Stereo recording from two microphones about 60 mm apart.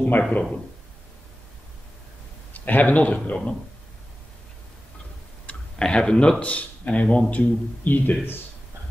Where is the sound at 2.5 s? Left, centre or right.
Left.